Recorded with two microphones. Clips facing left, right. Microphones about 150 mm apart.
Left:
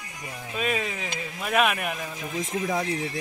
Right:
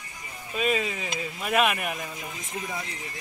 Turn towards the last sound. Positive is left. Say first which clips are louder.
# left 8 dB
turn(degrees=90)